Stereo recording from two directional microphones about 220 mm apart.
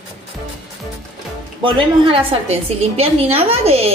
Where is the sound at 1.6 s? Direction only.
25° right (ahead or behind).